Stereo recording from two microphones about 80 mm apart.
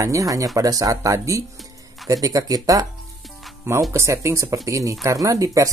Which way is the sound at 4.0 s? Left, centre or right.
Right.